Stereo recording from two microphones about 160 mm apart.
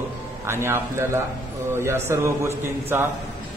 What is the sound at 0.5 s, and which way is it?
A man's voice, 15° right (ahead or behind).